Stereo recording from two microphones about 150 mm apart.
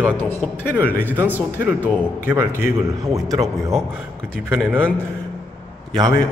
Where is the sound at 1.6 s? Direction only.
15° right (ahead or behind).